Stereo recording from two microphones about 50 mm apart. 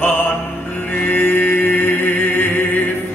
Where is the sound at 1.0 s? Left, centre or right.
Left.